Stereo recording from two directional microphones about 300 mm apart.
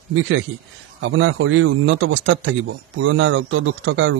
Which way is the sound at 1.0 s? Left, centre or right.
Right.